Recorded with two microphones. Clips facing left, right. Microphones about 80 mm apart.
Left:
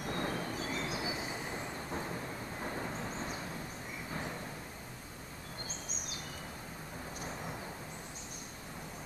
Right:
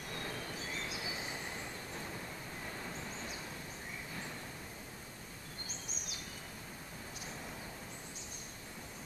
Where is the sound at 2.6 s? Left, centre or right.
Left.